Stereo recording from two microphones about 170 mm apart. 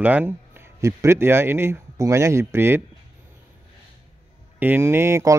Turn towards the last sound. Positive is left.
turn(degrees=-15)  # may be behind; listen again after turning